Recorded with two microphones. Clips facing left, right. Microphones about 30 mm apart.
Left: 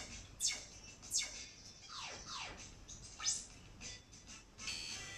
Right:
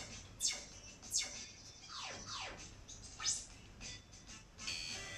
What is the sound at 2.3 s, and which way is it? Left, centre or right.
Music, centre.